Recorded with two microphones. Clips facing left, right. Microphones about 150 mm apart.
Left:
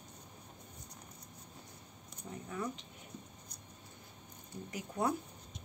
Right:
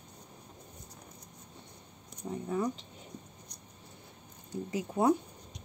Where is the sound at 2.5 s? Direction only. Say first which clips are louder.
Right 8 dB; 35° right (ahead or behind).